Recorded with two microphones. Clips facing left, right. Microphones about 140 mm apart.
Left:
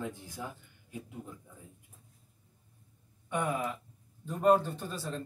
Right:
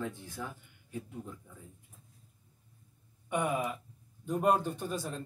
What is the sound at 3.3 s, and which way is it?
Speech, 10° right (ahead or behind).